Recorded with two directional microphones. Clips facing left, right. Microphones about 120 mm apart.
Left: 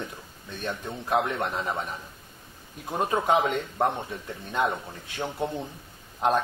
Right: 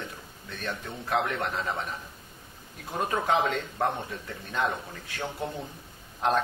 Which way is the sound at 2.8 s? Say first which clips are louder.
Left 3 dB; 20° left (ahead or behind).